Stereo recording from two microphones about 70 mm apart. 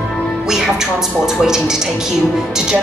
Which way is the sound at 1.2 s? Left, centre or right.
Centre.